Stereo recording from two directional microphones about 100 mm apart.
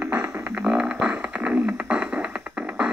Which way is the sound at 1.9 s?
10° right (ahead or behind).